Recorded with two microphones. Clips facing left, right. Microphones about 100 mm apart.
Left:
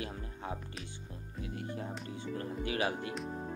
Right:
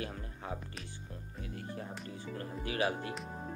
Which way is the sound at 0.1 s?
30° left (ahead or behind).